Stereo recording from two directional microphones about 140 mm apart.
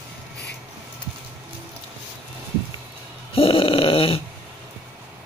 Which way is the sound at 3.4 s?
40° left (ahead or behind).